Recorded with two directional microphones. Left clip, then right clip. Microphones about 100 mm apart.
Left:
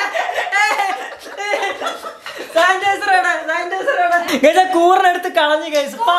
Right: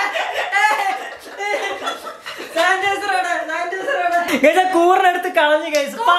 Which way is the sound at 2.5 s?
20° left (ahead or behind).